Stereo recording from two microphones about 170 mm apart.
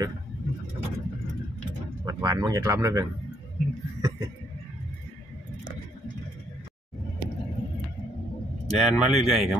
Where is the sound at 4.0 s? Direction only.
20° right (ahead or behind).